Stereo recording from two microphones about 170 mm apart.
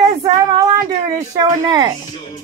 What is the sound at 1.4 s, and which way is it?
Speech, 25° right (ahead or behind).